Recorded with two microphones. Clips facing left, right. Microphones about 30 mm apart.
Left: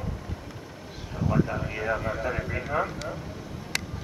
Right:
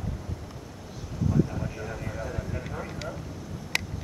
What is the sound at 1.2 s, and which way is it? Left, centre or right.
Speech, left.